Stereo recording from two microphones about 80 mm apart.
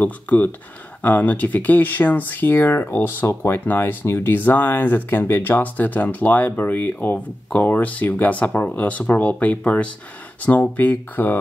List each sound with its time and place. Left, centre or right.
0.0 s speech: left